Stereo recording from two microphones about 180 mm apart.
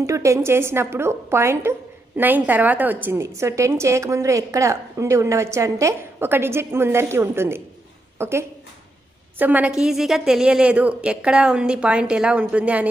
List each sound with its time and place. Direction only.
0.0 s a woman's voice: 15° right (ahead or behind)